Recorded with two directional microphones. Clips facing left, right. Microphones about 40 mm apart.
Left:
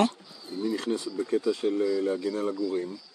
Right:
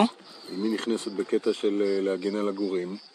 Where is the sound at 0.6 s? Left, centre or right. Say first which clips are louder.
Right 2 dB; right.